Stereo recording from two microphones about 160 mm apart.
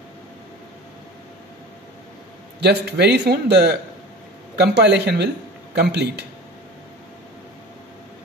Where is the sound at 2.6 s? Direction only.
90° right.